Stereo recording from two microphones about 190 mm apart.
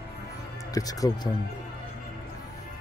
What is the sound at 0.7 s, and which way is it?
Speech, 20° left (ahead or behind).